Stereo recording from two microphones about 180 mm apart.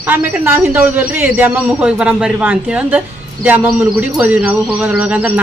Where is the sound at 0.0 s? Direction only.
10° right (ahead or behind).